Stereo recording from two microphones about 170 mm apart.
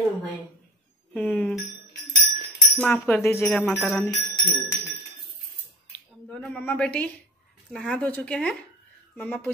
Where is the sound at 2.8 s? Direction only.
10° left (ahead or behind).